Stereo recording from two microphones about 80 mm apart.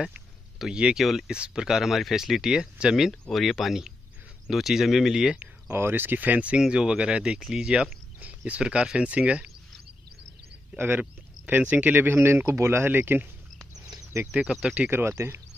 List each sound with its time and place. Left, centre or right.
0.0 s a sound: centre
1.0 s speech: centre
5.7 s speech: right
10.8 s speech: right
14.3 s speech: centre
14.9 s speech: right